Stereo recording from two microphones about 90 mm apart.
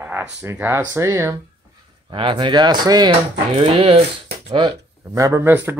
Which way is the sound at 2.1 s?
65° right (ahead or behind).